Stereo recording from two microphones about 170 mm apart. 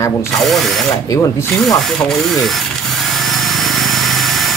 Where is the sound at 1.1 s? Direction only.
20° left (ahead or behind).